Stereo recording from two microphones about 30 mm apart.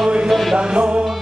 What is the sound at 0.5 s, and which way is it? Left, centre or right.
Music, right.